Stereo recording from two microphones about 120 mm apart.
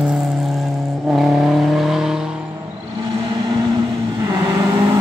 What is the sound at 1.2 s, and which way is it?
Vehicle, centre (ahead or behind).